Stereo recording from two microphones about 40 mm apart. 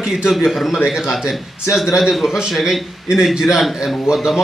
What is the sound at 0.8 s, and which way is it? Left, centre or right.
A man's voice, centre.